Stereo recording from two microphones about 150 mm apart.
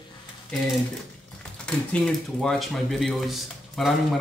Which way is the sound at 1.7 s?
5° left (ahead or behind).